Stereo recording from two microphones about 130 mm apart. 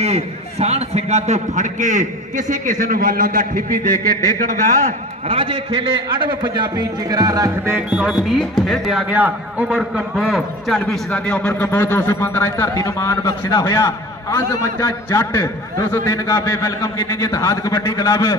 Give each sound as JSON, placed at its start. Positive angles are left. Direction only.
{"t": 0.0, "sound": "a man's voice", "side_deg": -55}
{"t": 4.8, "sound": "a man's voice", "side_deg": -45}
{"t": 7.9, "sound": "a man's voice", "side_deg": -5}